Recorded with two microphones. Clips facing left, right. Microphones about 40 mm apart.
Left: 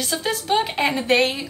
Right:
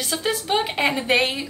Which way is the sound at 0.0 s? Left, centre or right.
Centre.